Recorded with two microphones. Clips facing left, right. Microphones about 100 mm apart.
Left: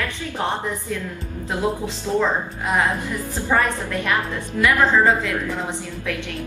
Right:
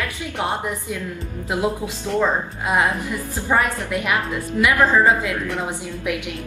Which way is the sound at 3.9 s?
15° right (ahead or behind).